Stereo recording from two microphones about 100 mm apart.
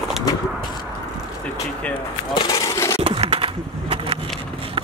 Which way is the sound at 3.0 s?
75° right (ahead or behind).